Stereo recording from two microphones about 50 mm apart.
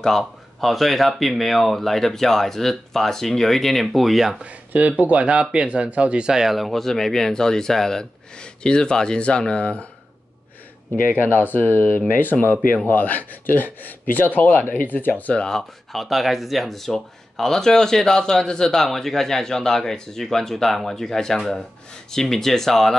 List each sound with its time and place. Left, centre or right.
0.2 s speech: centre
4.4 s speech: right; by 9.8 s left
11.1 s speech: left
15.3 s speech: centre
15.9 s speech: centre